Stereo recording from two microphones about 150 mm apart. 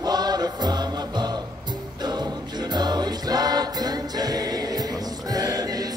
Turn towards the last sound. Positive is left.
turn(degrees=-25)  # may be behind; listen again after turning